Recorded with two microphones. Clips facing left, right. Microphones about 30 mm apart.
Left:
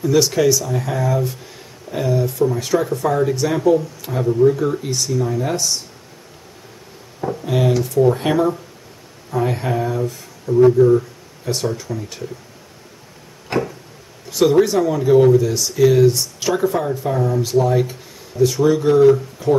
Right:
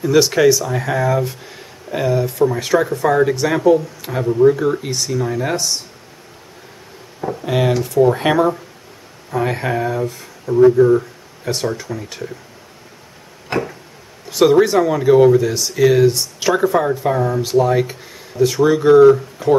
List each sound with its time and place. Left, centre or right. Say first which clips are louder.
0.0 s speech: right 3 dB; right
7.4 s speech: right 1 dB; right
7.7 s speech: even; centre
8.0 s speech: right 3 dB; right
11.4 s speech: right 1 dB; centre
13.5 s tick-tock: even; centre
14.3 s speech: right 2 dB; centre
19.4 s speech: right 3 dB; centre